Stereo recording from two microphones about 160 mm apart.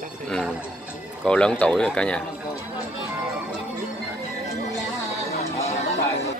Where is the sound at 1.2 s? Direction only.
5° left (ahead or behind).